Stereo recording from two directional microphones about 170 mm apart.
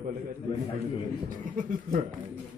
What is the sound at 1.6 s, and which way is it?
Speech, 50° right (ahead or behind).